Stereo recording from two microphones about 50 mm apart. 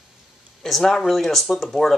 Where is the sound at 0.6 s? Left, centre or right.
Centre.